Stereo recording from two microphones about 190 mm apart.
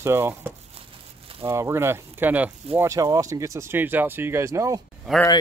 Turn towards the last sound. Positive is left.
turn(degrees=0)  # may be behind; listen again after turning